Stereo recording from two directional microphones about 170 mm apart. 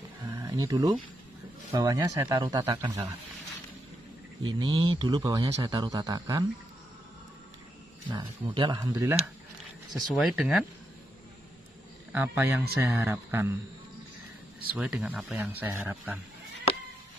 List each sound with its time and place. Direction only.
0.5 s a man's voice: 20° right (ahead or behind)
4.5 s a man's voice: 25° right (ahead or behind)
8.1 s a man's voice: 25° right (ahead or behind)
8.8 s speech: 15° right (ahead or behind)
10.0 s speech: centre (ahead or behind)
12.1 s speech: 10° right (ahead or behind)
14.7 s speech: 5° right (ahead or behind)
15.5 s speech: 10° right (ahead or behind)